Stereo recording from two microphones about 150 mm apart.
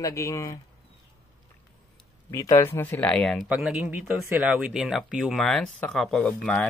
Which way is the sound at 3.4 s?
10° right (ahead or behind).